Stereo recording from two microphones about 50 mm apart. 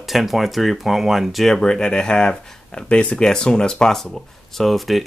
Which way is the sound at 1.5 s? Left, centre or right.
Centre.